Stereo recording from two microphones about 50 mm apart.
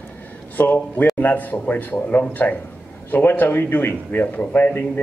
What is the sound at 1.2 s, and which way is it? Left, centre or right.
Speech, left.